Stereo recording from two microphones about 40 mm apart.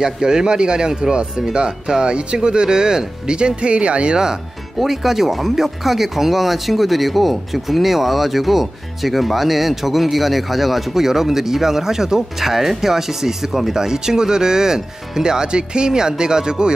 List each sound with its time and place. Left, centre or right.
0.0 s speech: centre
4.7 s speech: centre